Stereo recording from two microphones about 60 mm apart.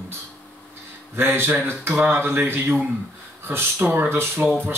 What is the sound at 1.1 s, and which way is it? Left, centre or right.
Speech, right.